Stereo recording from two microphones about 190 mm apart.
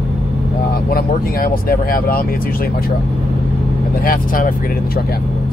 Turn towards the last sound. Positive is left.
turn(degrees=45)  # may be behind; listen again after turning